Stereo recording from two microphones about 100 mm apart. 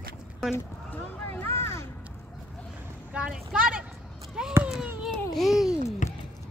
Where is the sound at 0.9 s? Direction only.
20° left (ahead or behind).